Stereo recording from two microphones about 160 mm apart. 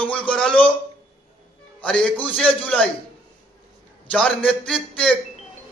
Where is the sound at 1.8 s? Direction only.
5° left (ahead or behind).